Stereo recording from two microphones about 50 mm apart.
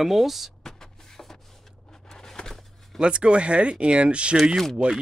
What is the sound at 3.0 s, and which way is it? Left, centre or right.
Speech, right.